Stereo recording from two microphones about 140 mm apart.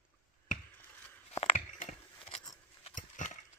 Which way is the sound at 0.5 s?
65° left (ahead or behind).